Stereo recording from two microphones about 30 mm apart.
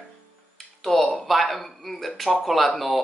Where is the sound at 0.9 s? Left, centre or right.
Centre.